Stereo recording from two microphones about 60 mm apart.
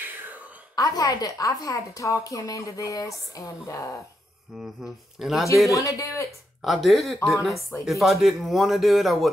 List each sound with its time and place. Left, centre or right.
0.7 s a woman's voice: left
4.6 s speech: centre
5.7 s speech: left
6.6 s speech: centre